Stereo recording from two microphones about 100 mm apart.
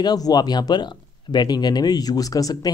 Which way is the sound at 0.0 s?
40° left (ahead or behind).